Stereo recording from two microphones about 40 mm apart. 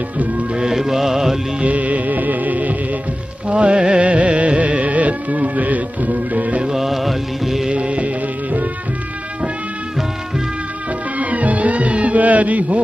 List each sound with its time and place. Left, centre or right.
0.6 s music: centre
1.6 s music: right
3.4 s music: right
6.7 s music: centre
7.7 s music: right
11.1 s music: right